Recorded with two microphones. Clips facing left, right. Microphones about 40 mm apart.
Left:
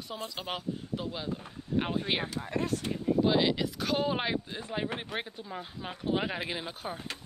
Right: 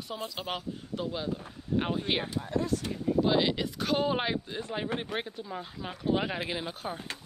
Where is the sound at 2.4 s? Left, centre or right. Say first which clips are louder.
Right 2 dB; left.